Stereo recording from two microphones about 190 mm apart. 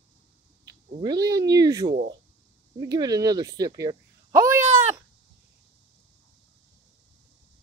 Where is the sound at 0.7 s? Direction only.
20° right (ahead or behind).